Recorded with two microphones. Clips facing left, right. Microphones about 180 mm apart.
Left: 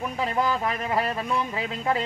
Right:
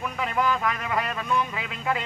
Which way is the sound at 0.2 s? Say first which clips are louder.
Even; 30° left (ahead or behind).